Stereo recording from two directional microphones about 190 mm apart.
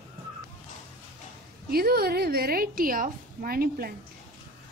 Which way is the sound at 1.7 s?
55° right (ahead or behind).